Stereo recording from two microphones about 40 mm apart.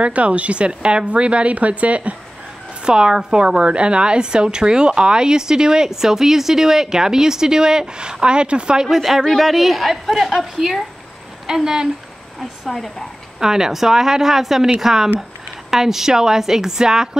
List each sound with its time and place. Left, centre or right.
0.0 s a woman's voice: right
2.8 s a woman's voice: right
8.8 s a woman's voice: centre
9.2 s a woman's voice: centre
12.4 s a woman's voice: centre
13.4 s a woman's voice: centre